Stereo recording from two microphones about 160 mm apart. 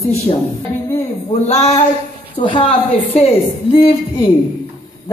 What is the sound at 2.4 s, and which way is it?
Speech, 30° left (ahead or behind).